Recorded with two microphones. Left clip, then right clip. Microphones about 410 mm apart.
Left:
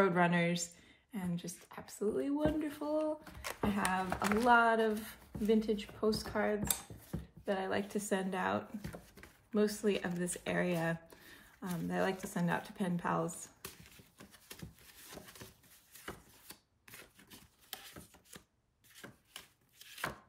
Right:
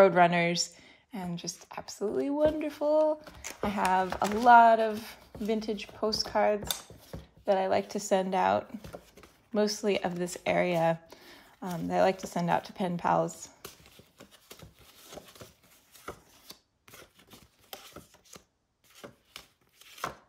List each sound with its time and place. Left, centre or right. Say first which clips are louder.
0.0 s a woman's voice: right 9 dB; centre
14.1 s a sound: right 3 dB; centre
18.9 s chopping: right 5 dB; centre